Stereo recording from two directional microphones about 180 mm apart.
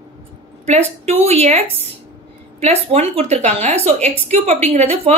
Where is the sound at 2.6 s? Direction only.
35° right (ahead or behind).